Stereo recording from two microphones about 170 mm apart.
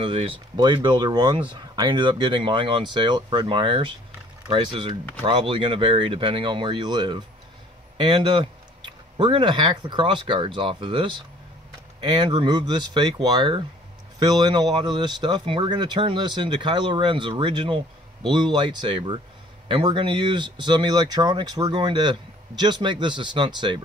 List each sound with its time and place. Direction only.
0.0 s speech: 30° right (ahead or behind)